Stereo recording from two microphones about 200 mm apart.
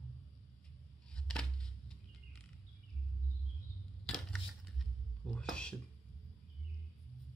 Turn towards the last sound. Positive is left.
turn(degrees=5)  # may be behind; listen again after turning